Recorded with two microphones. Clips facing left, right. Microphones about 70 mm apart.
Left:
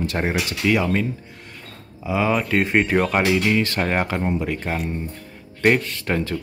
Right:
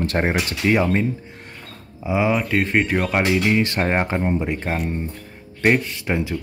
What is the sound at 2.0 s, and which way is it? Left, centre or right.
Speech, centre.